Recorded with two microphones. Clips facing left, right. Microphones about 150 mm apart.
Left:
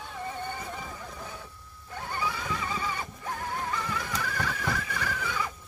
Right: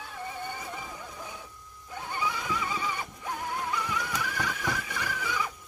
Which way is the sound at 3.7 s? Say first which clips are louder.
Right 1 dB; 15° right (ahead or behind).